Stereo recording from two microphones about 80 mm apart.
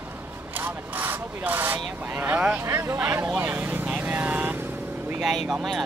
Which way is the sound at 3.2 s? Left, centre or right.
Centre.